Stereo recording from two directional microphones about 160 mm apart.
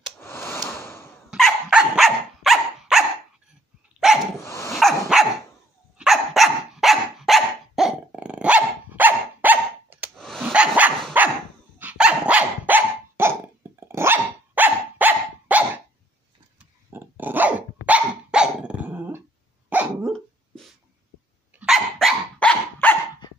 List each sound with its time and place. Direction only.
0.2 s a sound: 15° left (ahead or behind)
1.3 s dog: 5° right (ahead or behind)
4.4 s dog: 15° left (ahead or behind)
4.7 s dog: centre (ahead or behind)
10.1 s dog: centre (ahead or behind)
20.1 s dog: centre (ahead or behind)